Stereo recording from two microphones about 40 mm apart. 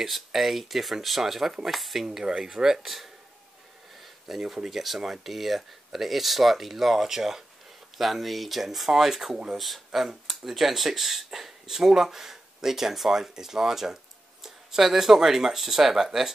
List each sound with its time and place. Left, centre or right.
0.0 s speech: centre
2.0 s speech: centre
4.3 s speech: centre